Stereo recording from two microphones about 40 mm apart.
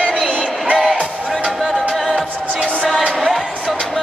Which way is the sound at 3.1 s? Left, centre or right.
Centre.